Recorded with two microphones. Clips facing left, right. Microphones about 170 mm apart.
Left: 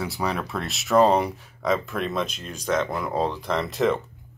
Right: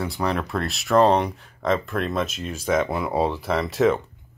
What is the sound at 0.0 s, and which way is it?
Speech, 5° left (ahead or behind).